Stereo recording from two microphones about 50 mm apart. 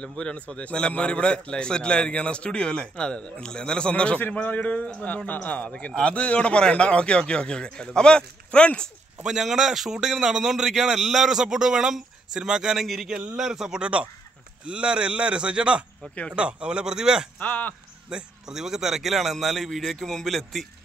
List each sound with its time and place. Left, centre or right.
0.0 s a man's voice: centre
4.3 s a man's voice: left
9.2 s a man's voice: centre
17.4 s a man's voice: left
18.1 s a man's voice: centre